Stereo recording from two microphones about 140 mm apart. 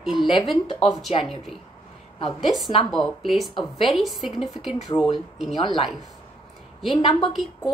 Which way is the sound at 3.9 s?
Centre (ahead or behind).